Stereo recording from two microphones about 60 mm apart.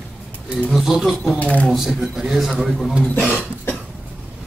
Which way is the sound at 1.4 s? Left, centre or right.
Left.